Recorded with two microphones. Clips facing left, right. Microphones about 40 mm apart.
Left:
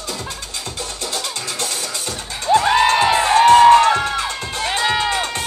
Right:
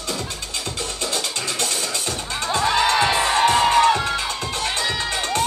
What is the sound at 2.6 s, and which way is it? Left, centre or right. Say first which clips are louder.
Music: left 3 dB; left.